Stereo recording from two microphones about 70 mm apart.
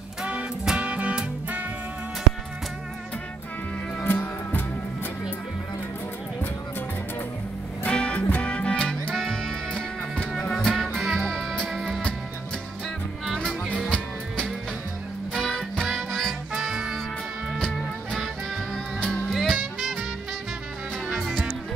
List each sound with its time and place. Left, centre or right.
0.2 s music: centre
4.0 s music: left
7.8 s music: centre
10.5 s music: centre
13.8 s music: centre
18.9 s music: centre
19.3 s music: centre
21.2 s music: centre